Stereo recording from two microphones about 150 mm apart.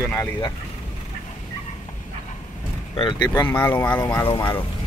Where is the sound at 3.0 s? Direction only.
25° left (ahead or behind).